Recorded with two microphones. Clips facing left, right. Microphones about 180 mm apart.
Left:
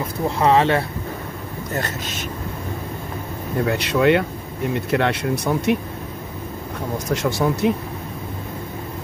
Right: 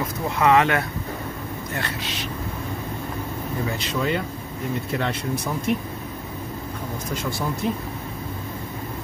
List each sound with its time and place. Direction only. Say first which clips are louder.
0.4 s speech: left 2 dB; 30° left (ahead or behind)
1.7 s speech: left 5 dB; 45° left (ahead or behind)
3.6 s speech: left 9 dB; 70° left (ahead or behind)
7.1 s speech: left 8 dB; 80° left